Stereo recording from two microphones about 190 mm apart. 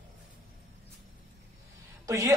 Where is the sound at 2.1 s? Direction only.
15° right (ahead or behind).